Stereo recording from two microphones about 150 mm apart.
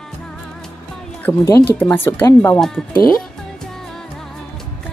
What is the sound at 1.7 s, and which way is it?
Speech, 15° left (ahead or behind).